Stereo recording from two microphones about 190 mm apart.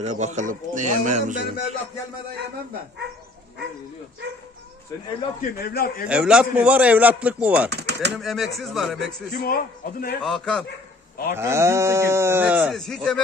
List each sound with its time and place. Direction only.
0.0 s speech: 40° right (ahead or behind)
5.4 s a man's voice: 55° left (ahead or behind)
6.0 s speech: 5° right (ahead or behind)
7.7 s bird: 60° right (ahead or behind)
8.2 s speech: centre (ahead or behind)
9.3 s a man's voice: 55° left (ahead or behind)
10.2 s speech: 5° left (ahead or behind)
11.3 s speech: 15° right (ahead or behind); by 13.2 s centre (ahead or behind)